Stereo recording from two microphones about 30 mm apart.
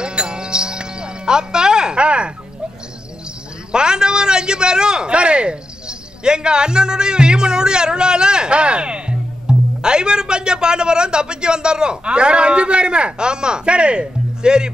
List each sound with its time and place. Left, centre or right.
0.0 s music: right
3.7 s a man's voice: right